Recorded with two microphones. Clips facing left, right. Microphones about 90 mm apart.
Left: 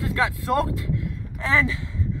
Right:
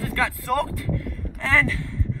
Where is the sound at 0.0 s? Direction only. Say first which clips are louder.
Left 1 dB; 20° left (ahead or behind).